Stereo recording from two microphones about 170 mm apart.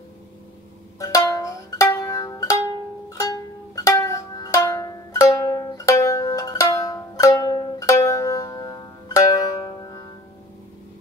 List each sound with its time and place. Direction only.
0.9 s music: 20° left (ahead or behind)